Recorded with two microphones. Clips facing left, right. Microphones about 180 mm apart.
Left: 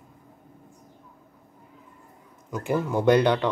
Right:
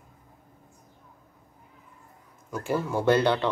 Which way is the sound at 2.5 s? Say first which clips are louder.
Left 2 dB; 15° left (ahead or behind).